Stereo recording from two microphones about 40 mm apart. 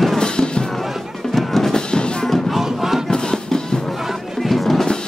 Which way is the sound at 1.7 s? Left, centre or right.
Left.